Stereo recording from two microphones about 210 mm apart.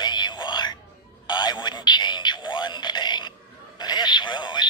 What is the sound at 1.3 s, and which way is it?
Radio, 20° left (ahead or behind).